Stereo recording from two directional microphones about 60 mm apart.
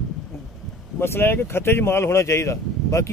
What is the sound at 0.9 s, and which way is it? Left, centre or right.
Speech, left.